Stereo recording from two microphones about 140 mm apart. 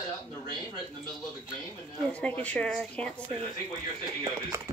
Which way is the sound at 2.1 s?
10° left (ahead or behind).